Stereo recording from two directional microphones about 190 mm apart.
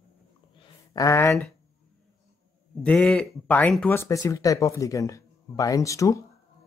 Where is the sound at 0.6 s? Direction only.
20° left (ahead or behind).